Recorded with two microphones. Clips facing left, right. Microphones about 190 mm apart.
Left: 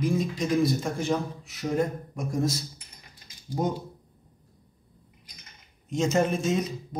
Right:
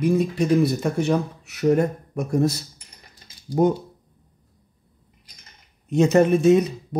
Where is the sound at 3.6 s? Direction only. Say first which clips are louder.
Right 9 dB; 60° right (ahead or behind).